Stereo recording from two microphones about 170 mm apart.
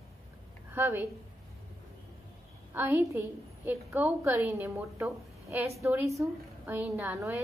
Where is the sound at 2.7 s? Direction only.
10° right (ahead or behind).